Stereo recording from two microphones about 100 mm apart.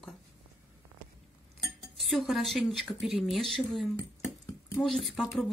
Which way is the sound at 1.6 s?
Centre (ahead or behind).